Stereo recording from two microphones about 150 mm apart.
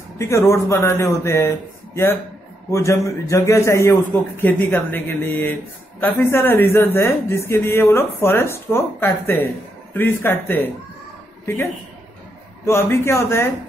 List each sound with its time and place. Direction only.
0.2 s speech: 20° left (ahead or behind)
2.7 s a man's voice: 20° left (ahead or behind)
12.6 s a man's voice: 15° left (ahead or behind)